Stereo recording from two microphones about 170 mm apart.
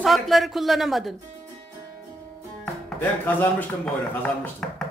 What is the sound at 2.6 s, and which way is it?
Speech, 10° left (ahead or behind).